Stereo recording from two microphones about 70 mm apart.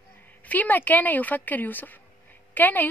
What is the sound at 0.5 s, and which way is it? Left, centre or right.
A woman's voice, left.